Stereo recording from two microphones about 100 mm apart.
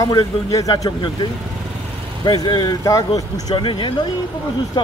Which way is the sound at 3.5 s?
60° left (ahead or behind).